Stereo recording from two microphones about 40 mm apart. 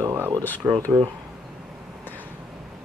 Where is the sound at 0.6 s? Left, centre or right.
Right.